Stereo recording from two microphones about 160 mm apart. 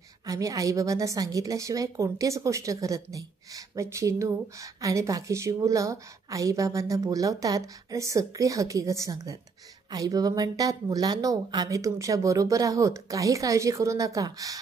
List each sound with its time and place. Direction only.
0.3 s a woman's voice: 20° right (ahead or behind)